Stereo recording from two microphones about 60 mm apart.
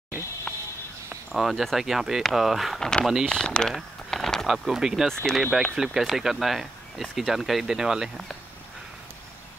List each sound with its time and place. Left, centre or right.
0.5 s a sound: centre
1.3 s speech: centre
2.8 s speech: centre
3.7 s a sound: centre
4.5 s speech: centre
5.0 s speech: centre